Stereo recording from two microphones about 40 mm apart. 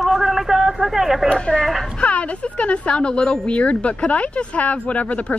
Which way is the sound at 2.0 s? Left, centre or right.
Left.